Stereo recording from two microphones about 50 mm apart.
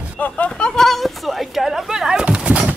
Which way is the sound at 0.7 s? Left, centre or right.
Centre.